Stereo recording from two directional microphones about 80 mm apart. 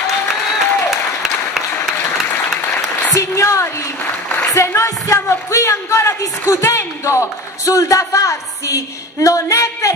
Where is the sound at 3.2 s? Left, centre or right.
Left.